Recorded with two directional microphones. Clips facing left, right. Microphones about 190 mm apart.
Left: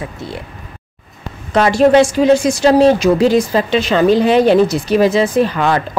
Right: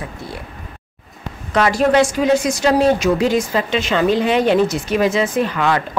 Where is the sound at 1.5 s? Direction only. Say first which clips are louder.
Left 5 dB; 30° left (ahead or behind).